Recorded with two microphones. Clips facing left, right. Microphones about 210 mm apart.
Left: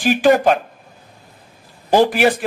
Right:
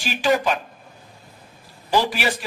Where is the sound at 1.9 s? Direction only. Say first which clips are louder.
Left 8 dB; 55° left (ahead or behind).